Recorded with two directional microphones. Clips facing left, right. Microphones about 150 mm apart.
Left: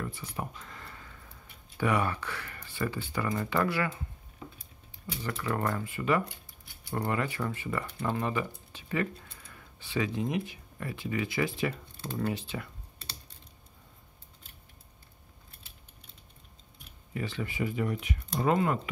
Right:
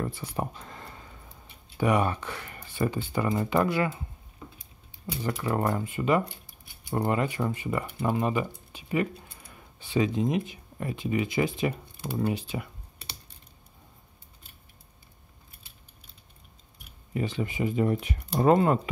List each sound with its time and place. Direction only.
0.0 s a sound: 35° right (ahead or behind)
1.8 s speech: 20° right (ahead or behind)
5.0 s speech: 20° right (ahead or behind)
17.1 s speech: 20° right (ahead or behind)
17.9 s speech: 40° right (ahead or behind)